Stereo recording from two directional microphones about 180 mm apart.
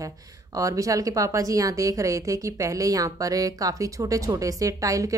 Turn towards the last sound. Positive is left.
turn(degrees=-20)  # may be behind; listen again after turning